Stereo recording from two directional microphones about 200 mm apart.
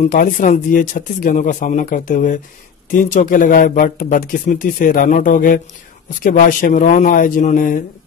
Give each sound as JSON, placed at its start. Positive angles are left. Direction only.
{"t": 0.0, "sound": "speech", "side_deg": 40}